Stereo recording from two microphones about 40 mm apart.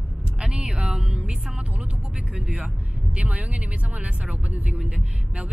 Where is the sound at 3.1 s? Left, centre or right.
Right.